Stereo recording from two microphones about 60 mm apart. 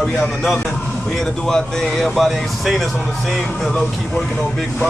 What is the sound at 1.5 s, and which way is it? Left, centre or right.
Speech, centre.